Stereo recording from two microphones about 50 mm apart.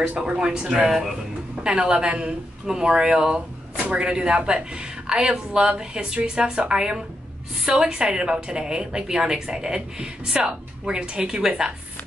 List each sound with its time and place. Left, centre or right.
0.3 s a woman's voice: centre